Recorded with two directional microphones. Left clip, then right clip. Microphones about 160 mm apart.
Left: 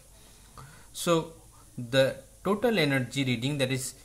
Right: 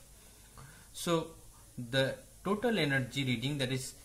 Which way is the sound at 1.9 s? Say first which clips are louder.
Left 8 dB; 35° left (ahead or behind).